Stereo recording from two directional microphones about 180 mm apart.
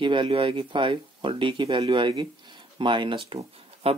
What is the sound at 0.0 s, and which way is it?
Speech, 25° right (ahead or behind).